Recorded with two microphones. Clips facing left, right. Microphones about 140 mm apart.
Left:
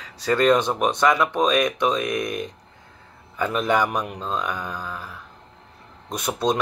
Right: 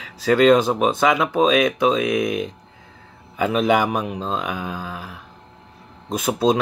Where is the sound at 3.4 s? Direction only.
10° right (ahead or behind).